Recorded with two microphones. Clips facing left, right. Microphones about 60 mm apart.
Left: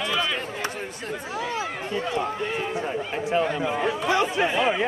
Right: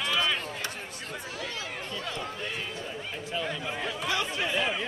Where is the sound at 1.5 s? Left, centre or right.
Left.